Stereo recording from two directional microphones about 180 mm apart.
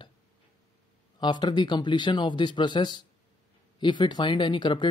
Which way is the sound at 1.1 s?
25° left (ahead or behind).